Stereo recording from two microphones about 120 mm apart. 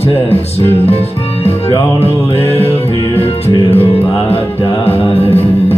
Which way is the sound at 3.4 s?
55° left (ahead or behind).